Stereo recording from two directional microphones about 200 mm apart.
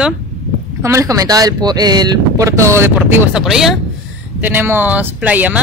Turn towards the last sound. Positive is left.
turn(degrees=-10)  # may be behind; listen again after turning